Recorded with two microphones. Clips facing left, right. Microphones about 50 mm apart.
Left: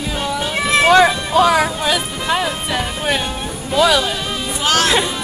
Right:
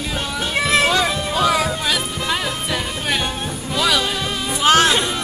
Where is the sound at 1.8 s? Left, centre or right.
Centre.